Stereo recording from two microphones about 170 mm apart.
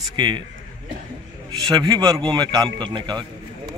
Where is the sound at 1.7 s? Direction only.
25° right (ahead or behind).